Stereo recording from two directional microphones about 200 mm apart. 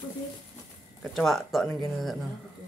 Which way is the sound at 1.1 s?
Centre (ahead or behind).